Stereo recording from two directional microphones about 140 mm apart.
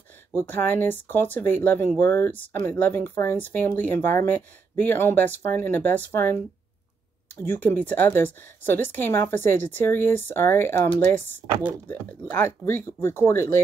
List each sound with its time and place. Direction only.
0.3 s speech: 15° left (ahead or behind)
7.4 s speech: 15° left (ahead or behind)